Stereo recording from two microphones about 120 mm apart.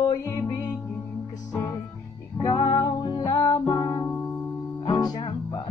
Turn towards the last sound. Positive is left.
turn(degrees=45)  # may be behind; listen again after turning